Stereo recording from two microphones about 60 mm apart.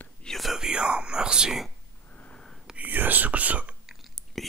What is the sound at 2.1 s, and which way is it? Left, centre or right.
Sniff, left.